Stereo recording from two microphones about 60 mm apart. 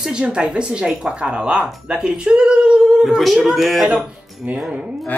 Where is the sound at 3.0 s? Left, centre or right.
Centre.